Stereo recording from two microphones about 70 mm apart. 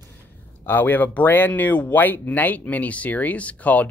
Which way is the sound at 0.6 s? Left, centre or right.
Left.